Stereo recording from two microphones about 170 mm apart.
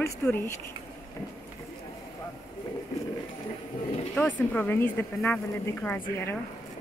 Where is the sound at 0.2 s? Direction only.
10° left (ahead or behind).